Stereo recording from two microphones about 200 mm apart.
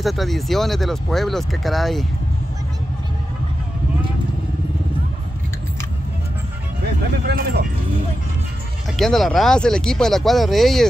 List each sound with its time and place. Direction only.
0.0 s speech: centre (ahead or behind)
7.2 s music: 55° right (ahead or behind)
8.9 s speech: centre (ahead or behind)